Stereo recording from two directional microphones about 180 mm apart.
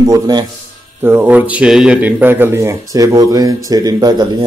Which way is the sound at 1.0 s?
10° right (ahead or behind).